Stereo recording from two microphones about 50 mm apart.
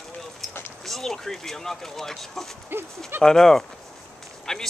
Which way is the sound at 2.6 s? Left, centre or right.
Right.